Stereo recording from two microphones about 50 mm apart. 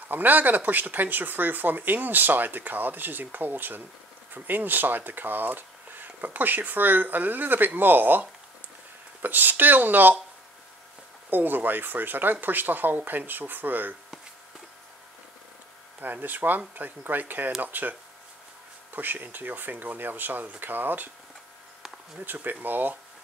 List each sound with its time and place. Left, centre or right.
0.1 s speech: right
11.2 s speech: right
16.0 s speech: right
18.9 s speech: right
22.2 s speech: right